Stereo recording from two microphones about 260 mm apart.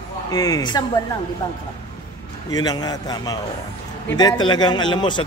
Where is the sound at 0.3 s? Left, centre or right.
Centre.